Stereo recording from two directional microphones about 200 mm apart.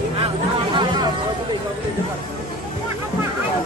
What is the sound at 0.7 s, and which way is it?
Chatter, 20° right (ahead or behind).